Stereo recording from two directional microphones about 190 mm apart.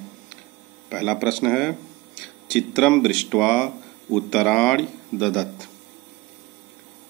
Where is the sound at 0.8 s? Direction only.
Centre (ahead or behind).